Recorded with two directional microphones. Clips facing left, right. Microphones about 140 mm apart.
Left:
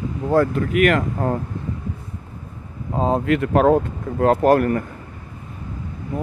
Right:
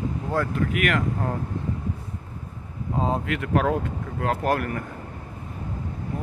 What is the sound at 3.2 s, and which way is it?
Speech, 40° left (ahead or behind).